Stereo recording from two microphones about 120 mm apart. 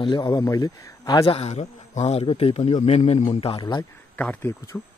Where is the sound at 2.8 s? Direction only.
75° left (ahead or behind).